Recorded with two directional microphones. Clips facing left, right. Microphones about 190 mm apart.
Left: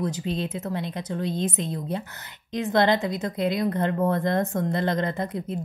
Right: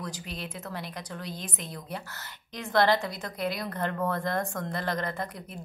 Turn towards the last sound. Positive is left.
turn(degrees=20)  # may be behind; listen again after turning